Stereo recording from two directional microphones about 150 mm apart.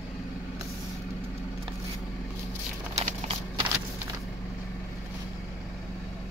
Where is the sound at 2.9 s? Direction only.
45° right (ahead or behind).